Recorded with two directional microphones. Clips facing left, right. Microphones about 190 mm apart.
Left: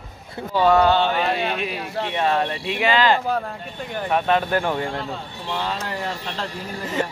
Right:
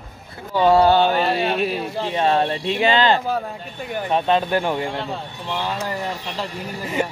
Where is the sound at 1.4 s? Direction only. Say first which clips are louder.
Right 4 dB; 40° right (ahead or behind).